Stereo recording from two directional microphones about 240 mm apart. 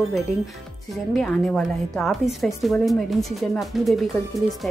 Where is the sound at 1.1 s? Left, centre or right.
Centre.